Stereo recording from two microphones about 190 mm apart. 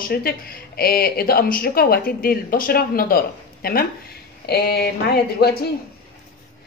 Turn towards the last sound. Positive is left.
turn(degrees=55)  # may be behind; listen again after turning